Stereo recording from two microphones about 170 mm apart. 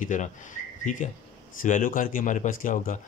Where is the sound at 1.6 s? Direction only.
50° left (ahead or behind).